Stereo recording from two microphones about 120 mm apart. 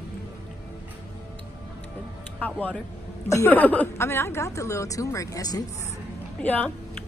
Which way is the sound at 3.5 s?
15° left (ahead or behind).